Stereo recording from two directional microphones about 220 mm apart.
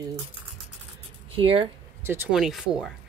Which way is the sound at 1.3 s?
25° right (ahead or behind).